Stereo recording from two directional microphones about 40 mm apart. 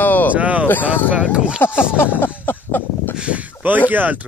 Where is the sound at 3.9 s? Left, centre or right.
Right.